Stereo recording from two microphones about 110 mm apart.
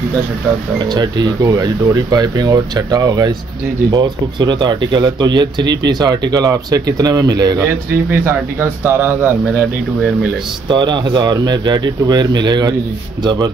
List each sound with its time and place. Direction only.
0.7 s speech: 40° right (ahead or behind); by 9.3 s 20° right (ahead or behind)
10.7 s speech: 40° right (ahead or behind)